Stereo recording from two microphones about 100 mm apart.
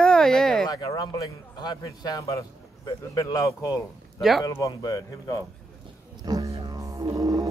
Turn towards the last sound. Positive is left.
turn(degrees=-35)  # may be behind; listen again after turning